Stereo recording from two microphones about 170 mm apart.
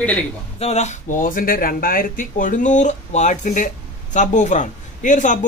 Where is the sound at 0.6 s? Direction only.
40° left (ahead or behind).